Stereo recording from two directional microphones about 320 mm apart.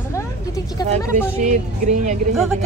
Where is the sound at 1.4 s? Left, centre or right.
Right.